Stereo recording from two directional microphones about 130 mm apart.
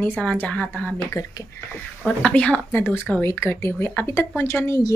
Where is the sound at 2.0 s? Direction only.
10° left (ahead or behind).